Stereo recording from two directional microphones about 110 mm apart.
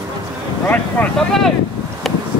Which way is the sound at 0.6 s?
15° left (ahead or behind).